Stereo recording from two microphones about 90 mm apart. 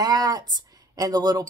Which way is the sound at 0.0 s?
45° right (ahead or behind).